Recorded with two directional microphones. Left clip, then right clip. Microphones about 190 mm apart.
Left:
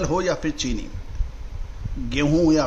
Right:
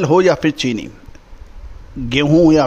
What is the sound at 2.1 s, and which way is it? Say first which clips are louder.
Speech: right 8 dB; 45° right (ahead or behind).